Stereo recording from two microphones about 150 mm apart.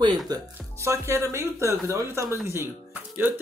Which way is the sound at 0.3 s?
20° right (ahead or behind).